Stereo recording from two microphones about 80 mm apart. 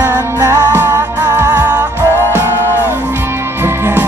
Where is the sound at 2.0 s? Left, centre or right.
Right.